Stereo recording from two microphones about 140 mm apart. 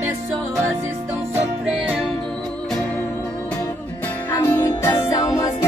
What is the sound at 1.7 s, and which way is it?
Music, 5° right (ahead or behind).